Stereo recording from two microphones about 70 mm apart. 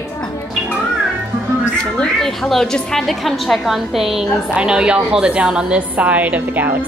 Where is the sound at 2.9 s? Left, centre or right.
Centre.